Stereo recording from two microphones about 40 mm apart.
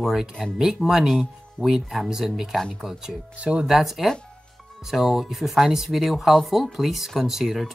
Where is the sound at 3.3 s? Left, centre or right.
Right.